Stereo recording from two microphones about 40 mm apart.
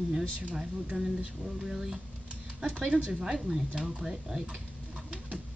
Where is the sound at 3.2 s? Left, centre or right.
Centre.